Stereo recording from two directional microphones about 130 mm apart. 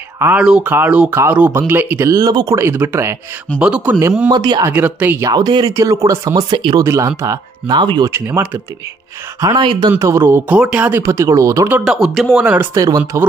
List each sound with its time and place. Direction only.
0.2 s speech: 10° right (ahead or behind)
4.3 s speech: 30° right (ahead or behind)
4.6 s speech: 15° right (ahead or behind)
5.3 s speech: 35° right (ahead or behind)
5.7 s speech: 20° right (ahead or behind)
8.1 s speech: 15° right (ahead or behind)
9.4 s speech: 35° right (ahead or behind)
11.8 s speech: 5° right (ahead or behind)
12.7 s speech: 25° right (ahead or behind)